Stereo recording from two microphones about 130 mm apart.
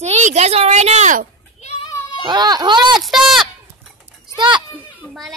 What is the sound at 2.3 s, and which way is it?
Speech, 35° right (ahead or behind).